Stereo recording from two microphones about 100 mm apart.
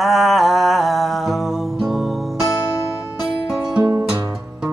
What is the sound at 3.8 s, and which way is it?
Music, 30° right (ahead or behind).